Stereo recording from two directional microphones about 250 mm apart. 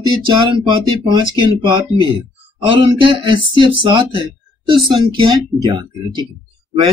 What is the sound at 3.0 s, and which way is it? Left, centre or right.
A man's voice, centre.